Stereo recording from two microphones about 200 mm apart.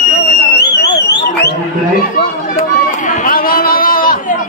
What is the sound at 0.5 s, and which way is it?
Alarm, 55° left (ahead or behind).